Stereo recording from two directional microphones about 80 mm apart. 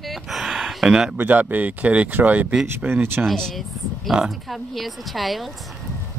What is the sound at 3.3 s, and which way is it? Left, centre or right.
Speech, centre.